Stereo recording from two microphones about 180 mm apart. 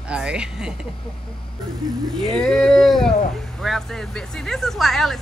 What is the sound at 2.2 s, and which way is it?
Speech, 5° left (ahead or behind).